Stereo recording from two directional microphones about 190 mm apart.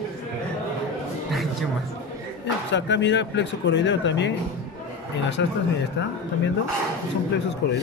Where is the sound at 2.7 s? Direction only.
65° left (ahead or behind).